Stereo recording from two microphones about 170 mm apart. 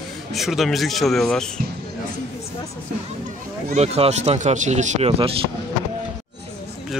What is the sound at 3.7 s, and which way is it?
Speech, 35° right (ahead or behind).